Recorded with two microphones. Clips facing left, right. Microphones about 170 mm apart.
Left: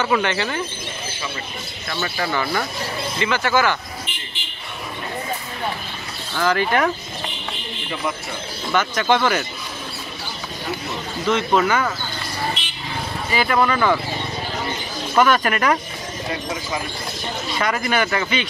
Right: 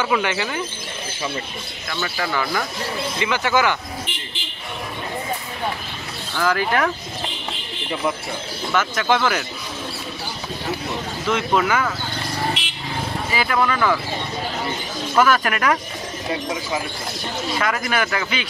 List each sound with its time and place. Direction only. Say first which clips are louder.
0.0 s speech: left 1 dB; 10° right (ahead or behind)
1.9 s speech: left 1 dB; 10° left (ahead or behind)
3.2 s speech: left 1 dB; 15° right (ahead or behind)
6.3 s speech: left 1 dB; centre (ahead or behind)
8.7 s speech: left 1 dB; centre (ahead or behind)
11.2 s speech: left 2 dB; 5° right (ahead or behind)
13.3 s speech: left 3 dB; centre (ahead or behind)
15.1 s speech: left 1 dB; centre (ahead or behind)
17.6 s speech: left 2 dB; centre (ahead or behind)